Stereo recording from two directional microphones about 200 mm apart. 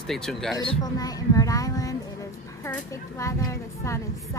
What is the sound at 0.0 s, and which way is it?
Speech, centre (ahead or behind).